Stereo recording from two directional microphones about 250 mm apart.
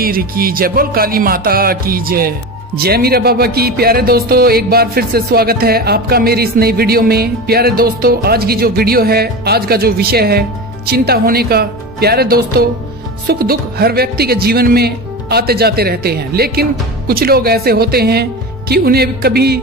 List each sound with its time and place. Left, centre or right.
0.0 s music: right